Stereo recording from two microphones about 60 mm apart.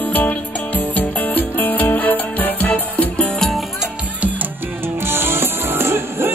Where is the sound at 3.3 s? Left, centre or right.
Centre.